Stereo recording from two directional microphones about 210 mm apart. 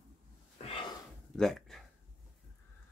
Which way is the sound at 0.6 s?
25° left (ahead or behind).